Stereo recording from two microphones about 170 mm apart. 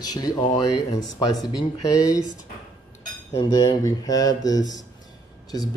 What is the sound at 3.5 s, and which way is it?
Speech, 20° left (ahead or behind).